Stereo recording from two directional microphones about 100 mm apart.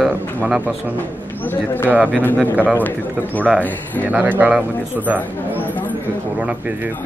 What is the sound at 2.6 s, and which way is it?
Speech, 15° left (ahead or behind).